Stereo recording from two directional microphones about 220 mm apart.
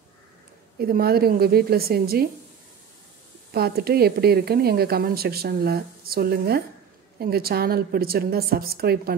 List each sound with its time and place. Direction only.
0.7 s a woman's voice: 45° right (ahead or behind)
3.5 s a woman's voice: 45° right (ahead or behind)